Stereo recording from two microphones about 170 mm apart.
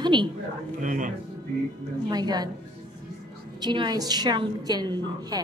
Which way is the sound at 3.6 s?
25° right (ahead or behind).